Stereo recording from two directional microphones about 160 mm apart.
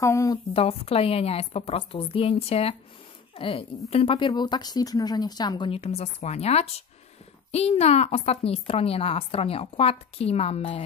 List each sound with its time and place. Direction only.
0.0 s a woman's voice: 20° left (ahead or behind)
0.5 s a woman's voice: 40° left (ahead or behind)